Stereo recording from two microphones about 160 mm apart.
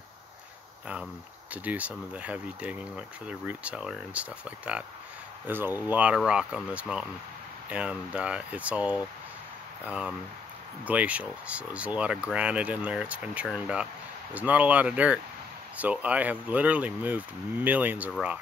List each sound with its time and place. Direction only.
1.5 s speech: 10° right (ahead or behind)